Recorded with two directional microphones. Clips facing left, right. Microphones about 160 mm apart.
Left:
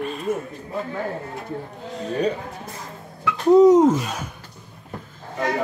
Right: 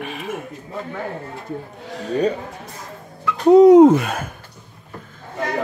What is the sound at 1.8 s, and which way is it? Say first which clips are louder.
Speech: even; 80° right.